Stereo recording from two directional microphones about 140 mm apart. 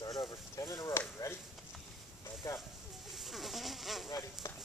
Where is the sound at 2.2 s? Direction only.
20° left (ahead or behind).